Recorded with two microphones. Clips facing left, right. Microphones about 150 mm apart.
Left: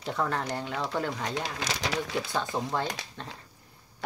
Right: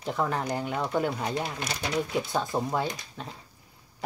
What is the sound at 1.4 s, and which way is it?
Speech, 90° left.